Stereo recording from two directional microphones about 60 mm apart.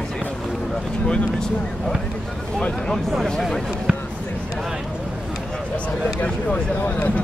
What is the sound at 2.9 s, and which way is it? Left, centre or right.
Speech, centre.